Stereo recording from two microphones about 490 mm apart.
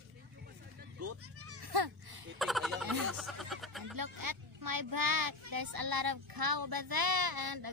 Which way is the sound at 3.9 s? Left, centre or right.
Right.